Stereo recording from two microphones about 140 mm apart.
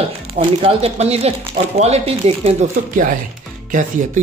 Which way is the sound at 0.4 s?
40° right (ahead or behind).